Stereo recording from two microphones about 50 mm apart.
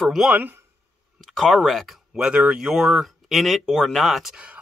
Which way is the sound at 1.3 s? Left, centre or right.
Centre.